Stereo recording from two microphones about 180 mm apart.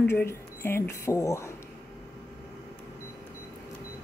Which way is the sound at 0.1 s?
15° left (ahead or behind).